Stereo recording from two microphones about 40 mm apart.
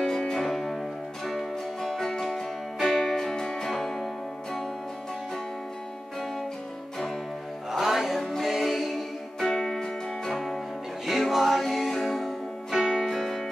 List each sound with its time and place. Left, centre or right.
0.0 s music: centre
7.8 s music: centre
9.8 s music: centre
12.7 s music: centre
13.0 s music: centre